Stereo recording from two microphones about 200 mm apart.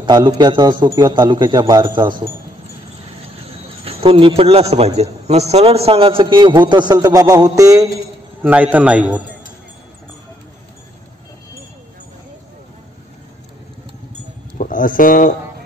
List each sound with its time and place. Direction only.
0.0 s a man's voice: 20° right (ahead or behind)
3.8 s a man's voice: 30° right (ahead or behind); by 9.2 s 5° right (ahead or behind)
14.6 s speech: 40° left (ahead or behind)